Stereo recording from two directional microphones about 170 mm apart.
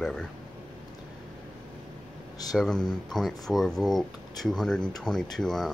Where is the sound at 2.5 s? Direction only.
5° left (ahead or behind).